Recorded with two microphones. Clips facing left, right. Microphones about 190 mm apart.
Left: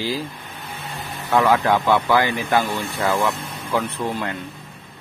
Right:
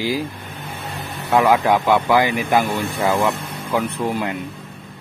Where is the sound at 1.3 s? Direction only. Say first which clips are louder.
Right 2 dB; 20° right (ahead or behind).